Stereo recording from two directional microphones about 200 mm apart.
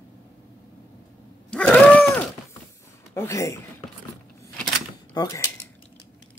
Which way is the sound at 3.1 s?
15° left (ahead or behind).